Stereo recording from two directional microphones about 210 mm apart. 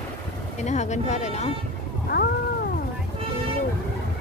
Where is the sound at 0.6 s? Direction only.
35° left (ahead or behind).